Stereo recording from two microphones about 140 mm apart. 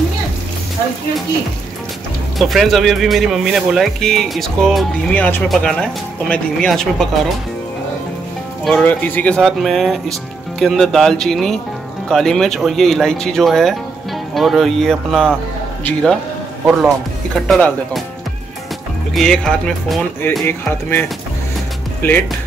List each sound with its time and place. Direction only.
2.3 s speech: centre (ahead or behind)
8.6 s speech: 10° left (ahead or behind)
17.4 s speech: 5° left (ahead or behind)
19.1 s speech: 5° left (ahead or behind)